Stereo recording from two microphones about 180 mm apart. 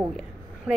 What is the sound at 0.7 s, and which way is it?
Speech, 5° right (ahead or behind).